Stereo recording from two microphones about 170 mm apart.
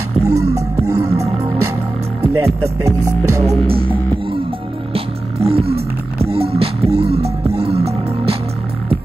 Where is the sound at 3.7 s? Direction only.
30° right (ahead or behind).